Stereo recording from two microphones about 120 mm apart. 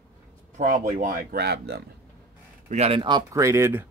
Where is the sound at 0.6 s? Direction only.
90° right.